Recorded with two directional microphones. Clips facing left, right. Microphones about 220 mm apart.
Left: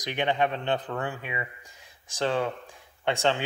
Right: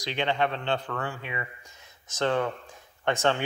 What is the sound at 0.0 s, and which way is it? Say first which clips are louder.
Speech: left 1 dB; 15° left (ahead or behind).